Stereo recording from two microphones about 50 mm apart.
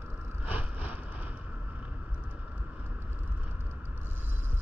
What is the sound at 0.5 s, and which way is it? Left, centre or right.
Vehicle, right.